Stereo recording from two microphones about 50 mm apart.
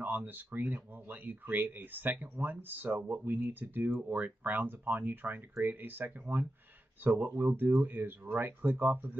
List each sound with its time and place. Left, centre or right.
0.0 s speech: right